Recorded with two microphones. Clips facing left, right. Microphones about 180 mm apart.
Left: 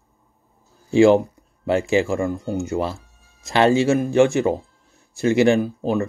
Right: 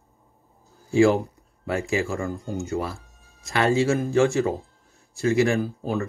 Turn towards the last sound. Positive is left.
turn(degrees=20)  # may be behind; listen again after turning